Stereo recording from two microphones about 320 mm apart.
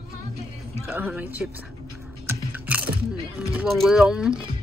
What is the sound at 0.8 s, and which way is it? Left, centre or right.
Speech, centre.